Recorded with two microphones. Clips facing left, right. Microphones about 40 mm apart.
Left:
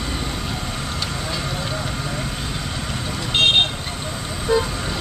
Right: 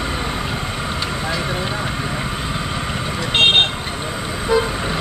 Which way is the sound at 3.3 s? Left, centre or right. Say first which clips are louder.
Right 2 dB; right.